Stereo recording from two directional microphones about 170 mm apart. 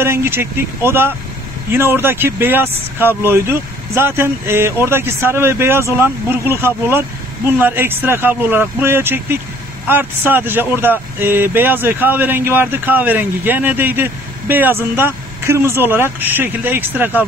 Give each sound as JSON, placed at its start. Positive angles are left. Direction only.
{"t": 0.0, "sound": "speech", "side_deg": -15}